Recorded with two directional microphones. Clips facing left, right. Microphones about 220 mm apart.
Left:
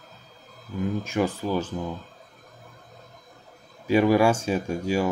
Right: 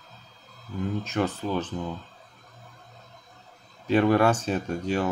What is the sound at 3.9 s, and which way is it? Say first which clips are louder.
Speech: left 1 dB; 10° left (ahead or behind).